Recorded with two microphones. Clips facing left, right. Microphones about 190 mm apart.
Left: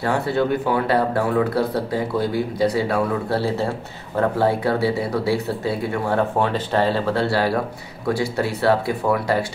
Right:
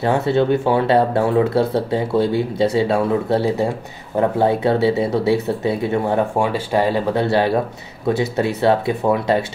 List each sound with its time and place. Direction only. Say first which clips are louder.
0.0 s speech: right 4 dB; 20° right (ahead or behind)